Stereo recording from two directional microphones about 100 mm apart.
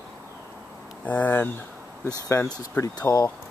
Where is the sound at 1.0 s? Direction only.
15° left (ahead or behind).